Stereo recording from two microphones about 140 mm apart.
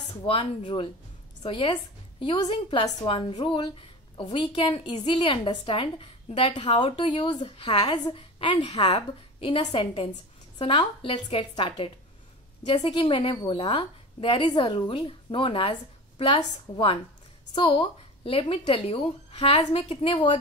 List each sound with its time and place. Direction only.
1.4 s a woman's voice: 35° left (ahead or behind)